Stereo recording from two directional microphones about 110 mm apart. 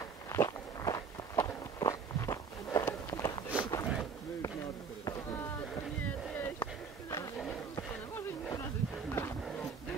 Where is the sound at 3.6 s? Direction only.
35° left (ahead or behind).